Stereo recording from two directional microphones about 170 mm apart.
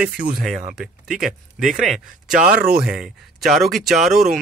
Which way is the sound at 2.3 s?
50° right (ahead or behind).